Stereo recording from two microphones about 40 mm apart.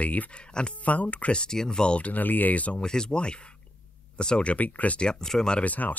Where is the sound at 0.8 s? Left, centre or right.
Left.